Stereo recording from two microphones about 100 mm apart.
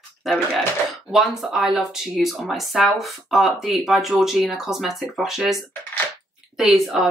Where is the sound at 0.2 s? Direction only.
5° right (ahead or behind).